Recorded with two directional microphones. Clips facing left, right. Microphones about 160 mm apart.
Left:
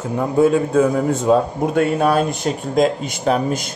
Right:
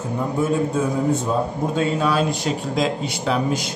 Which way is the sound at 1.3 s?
65° left (ahead or behind).